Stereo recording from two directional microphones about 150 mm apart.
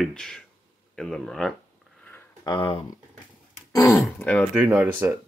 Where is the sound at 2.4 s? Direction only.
30° left (ahead or behind).